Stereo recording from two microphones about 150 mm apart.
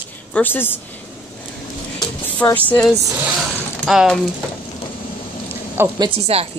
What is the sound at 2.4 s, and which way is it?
Speech, 10° left (ahead or behind).